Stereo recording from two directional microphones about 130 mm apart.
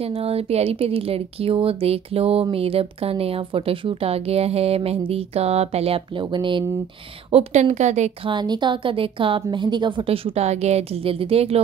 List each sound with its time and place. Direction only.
0.0 s speech: 50° right (ahead or behind)
7.2 s a woman's voice: 50° right (ahead or behind)
8.3 s speech: 35° right (ahead or behind)